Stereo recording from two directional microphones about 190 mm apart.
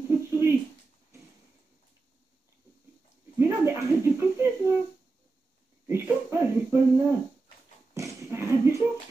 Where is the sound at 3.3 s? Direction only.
15° right (ahead or behind).